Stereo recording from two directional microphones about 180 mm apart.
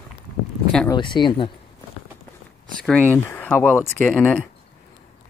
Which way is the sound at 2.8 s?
5° left (ahead or behind).